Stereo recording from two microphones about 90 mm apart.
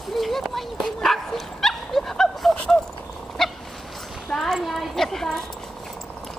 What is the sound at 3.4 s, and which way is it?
Dog, 5° left (ahead or behind).